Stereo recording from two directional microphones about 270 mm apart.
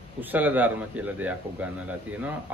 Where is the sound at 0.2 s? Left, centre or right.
Centre.